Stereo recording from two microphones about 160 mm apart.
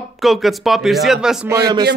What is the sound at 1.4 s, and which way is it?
Speech, 20° right (ahead or behind).